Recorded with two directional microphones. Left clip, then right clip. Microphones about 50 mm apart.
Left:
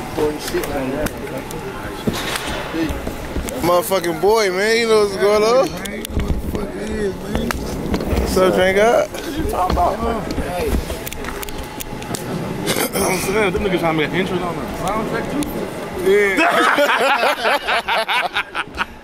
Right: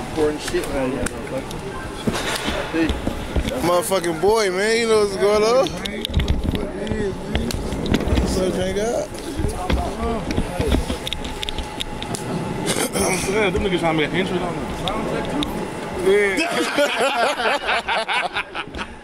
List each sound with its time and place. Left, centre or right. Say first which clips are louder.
3.6 s speech: left 3 dB; centre
8.3 s speech: left 12 dB; left
12.6 s speech: left 3 dB; centre
16.1 s speech: left 4 dB; centre